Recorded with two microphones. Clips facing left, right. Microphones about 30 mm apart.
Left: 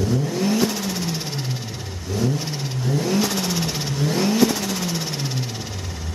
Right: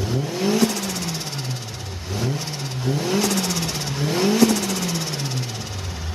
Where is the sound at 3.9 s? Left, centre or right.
Centre.